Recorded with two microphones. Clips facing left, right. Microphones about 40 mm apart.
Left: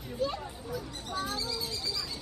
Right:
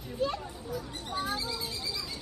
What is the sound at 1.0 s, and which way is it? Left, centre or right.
Speech, centre.